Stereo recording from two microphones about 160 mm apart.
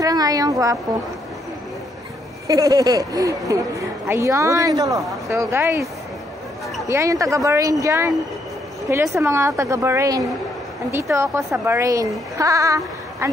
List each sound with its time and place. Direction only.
0.0 s a woman's voice: 25° right (ahead or behind)
2.4 s speech: 20° right (ahead or behind)
6.9 s speech: 20° right (ahead or behind)